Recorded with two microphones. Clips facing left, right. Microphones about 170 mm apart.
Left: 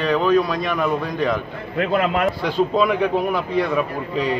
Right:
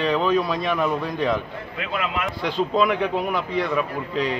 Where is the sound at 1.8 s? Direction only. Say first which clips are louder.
Left 8 dB; 45° left (ahead or behind).